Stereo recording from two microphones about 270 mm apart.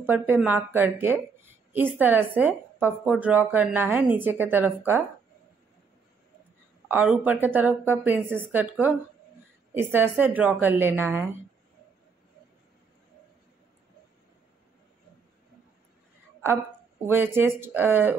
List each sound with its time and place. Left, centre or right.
0.0 s a woman's voice: centre
6.9 s a woman's voice: centre
17.0 s a woman's voice: centre